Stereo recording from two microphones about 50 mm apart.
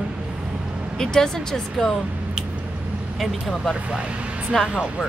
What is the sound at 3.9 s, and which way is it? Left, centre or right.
Speech, right.